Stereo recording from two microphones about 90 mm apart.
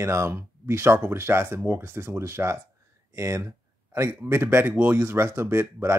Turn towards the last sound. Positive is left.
turn(degrees=-30)  # may be behind; listen again after turning